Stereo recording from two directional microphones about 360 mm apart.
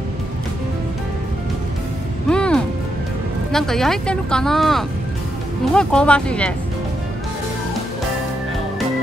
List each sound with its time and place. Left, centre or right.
2.2 s music: centre
3.5 s speech: centre